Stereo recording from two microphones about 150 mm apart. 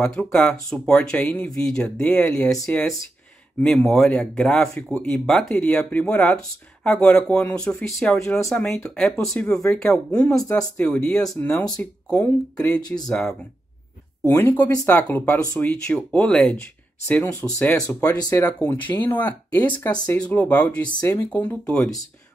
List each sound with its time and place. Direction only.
0.0 s speech: 5° left (ahead or behind); by 18.5 s 20° left (ahead or behind)
18.6 s speech: 10° left (ahead or behind)